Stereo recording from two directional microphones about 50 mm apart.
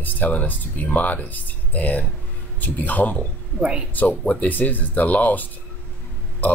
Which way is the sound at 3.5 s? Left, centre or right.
Right.